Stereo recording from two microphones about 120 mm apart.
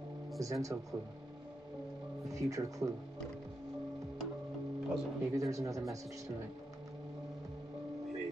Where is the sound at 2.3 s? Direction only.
25° right (ahead or behind).